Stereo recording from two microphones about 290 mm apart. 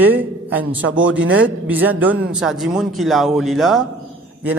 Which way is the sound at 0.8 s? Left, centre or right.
Right.